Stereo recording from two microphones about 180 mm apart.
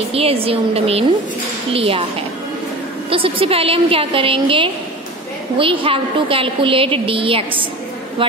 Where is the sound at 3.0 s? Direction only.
30° right (ahead or behind).